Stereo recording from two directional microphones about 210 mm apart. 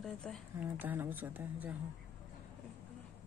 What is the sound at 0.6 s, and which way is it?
Speech, 10° right (ahead or behind).